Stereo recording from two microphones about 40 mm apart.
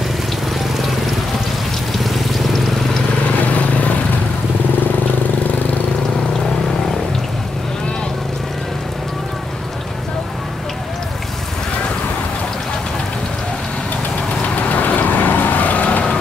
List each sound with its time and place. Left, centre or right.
2.0 s a sound: centre
3.5 s vehicle: left
14.5 s vehicle: left